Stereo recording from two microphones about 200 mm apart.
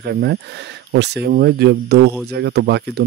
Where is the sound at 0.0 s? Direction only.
55° right (ahead or behind).